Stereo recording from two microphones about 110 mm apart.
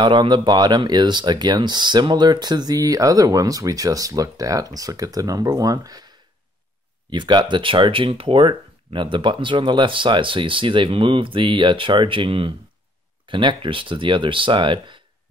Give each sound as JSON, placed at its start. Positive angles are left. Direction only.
{"t": 0.0, "sound": "speech", "side_deg": -45}